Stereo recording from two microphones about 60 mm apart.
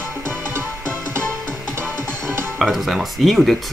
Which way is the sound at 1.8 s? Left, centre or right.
Right.